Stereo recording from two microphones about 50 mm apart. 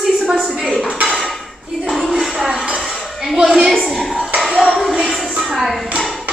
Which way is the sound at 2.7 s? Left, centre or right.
Centre.